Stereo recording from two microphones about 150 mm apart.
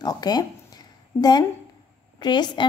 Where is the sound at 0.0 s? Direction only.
25° left (ahead or behind).